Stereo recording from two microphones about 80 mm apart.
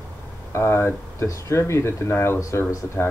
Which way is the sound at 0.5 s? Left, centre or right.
Left.